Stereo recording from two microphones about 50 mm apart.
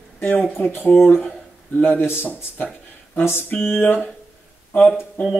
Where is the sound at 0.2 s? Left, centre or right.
Left.